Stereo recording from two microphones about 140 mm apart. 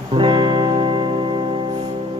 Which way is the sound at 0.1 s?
35° right (ahead or behind).